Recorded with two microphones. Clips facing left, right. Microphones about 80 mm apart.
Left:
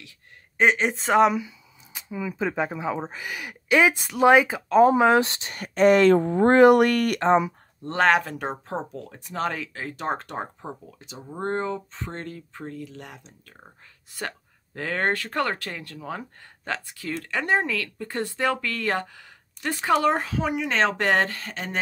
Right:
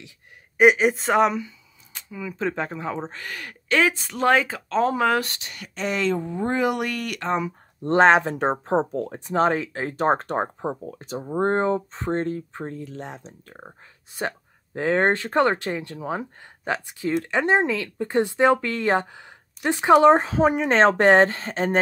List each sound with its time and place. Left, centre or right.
0.6 s speech: centre
2.0 s speech: centre; by 7.2 s left
7.8 s speech: right